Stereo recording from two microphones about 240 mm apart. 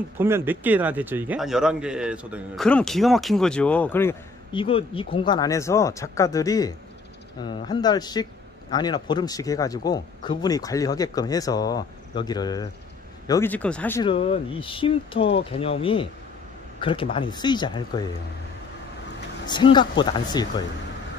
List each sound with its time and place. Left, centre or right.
0.2 s a man's voice: centre
4.6 s speech: left; by 14.0 s centre
14.0 s speech: left
19.4 s speech: centre